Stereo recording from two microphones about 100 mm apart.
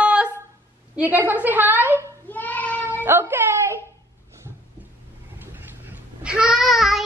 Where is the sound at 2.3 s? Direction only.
15° left (ahead or behind).